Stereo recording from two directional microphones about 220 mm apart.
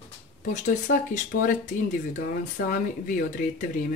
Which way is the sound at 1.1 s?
35° left (ahead or behind).